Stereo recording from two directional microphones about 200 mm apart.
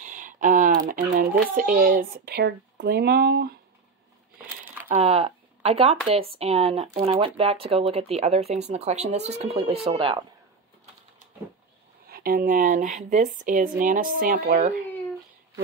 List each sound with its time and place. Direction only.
0.0 s a sound: 40° right (ahead or behind)
1.5 s speech: 45° right (ahead or behind)
4.8 s speech: 30° right (ahead or behind)
12.1 s speech: 45° right (ahead or behind)